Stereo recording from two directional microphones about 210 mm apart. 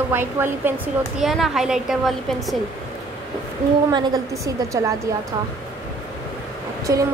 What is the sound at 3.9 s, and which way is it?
Speech, 20° right (ahead or behind).